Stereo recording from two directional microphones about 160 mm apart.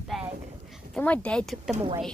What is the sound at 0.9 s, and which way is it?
Speech, 10° left (ahead or behind).